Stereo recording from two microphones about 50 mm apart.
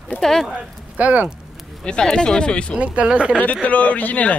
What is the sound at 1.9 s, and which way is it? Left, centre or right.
Speech, centre.